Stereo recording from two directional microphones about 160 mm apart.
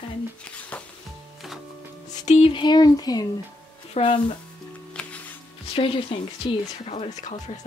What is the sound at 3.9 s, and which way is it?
Speech, 35° left (ahead or behind).